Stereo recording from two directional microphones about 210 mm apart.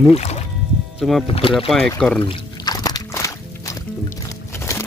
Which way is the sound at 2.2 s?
20° left (ahead or behind).